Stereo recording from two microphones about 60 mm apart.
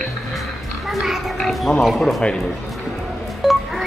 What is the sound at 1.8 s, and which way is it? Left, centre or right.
Speech, centre.